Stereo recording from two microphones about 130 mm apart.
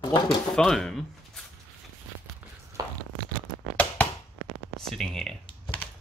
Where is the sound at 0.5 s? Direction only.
5° left (ahead or behind).